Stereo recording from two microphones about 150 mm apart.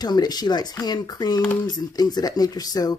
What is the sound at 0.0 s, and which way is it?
Speech, 25° left (ahead or behind).